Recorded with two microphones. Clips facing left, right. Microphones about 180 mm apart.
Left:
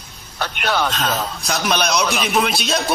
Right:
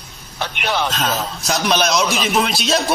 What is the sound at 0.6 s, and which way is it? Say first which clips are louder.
A man's voice: even; centre (ahead or behind).